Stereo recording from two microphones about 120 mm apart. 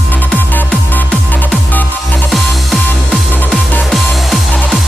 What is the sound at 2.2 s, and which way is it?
Music, centre (ahead or behind).